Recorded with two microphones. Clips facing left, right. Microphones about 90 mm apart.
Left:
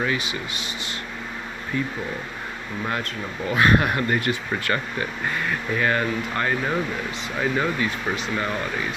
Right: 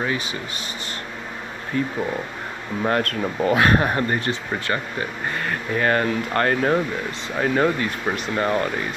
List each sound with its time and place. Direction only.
0.0 s speech: 35° right (ahead or behind)
1.7 s speech: 45° right (ahead or behind)
3.7 s speech: 35° right (ahead or behind)
5.4 s speech: 45° right (ahead or behind)